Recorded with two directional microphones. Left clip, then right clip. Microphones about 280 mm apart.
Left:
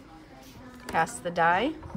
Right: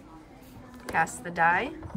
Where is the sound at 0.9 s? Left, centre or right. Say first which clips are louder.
Left 1 dB; centre.